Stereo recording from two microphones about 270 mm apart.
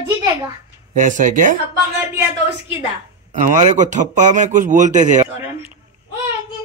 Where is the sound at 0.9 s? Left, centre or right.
Right.